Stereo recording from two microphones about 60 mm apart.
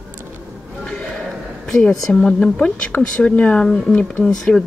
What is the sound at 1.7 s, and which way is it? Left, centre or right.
Speech, centre.